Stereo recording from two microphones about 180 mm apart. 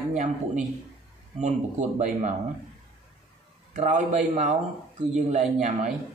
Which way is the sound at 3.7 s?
40° right (ahead or behind).